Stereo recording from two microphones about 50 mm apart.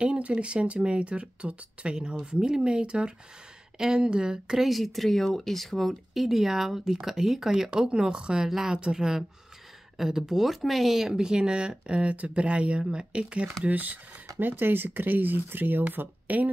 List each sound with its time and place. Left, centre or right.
0.0 s speech: right
4.6 s speech: centre; by 13.5 s right
13.7 s speech: right